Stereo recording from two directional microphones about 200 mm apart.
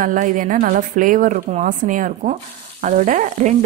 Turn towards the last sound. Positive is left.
turn(degrees=-40)  # may be behind; listen again after turning